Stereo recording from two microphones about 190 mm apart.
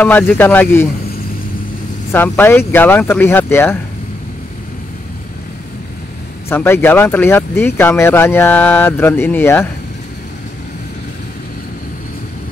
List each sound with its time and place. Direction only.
0.0 s speech: 10° left (ahead or behind)
2.1 s speech: 10° left (ahead or behind)
6.5 s speech: 10° left (ahead or behind)